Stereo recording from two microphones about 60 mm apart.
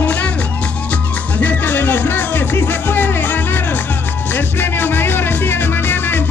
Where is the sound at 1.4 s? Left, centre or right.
Left.